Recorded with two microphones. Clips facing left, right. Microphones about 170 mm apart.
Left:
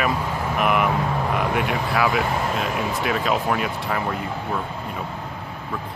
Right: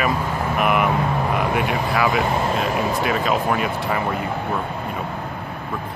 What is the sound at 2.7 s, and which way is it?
Speech, 40° right (ahead or behind).